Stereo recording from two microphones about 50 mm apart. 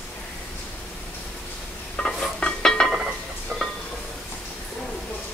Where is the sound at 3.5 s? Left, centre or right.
Centre.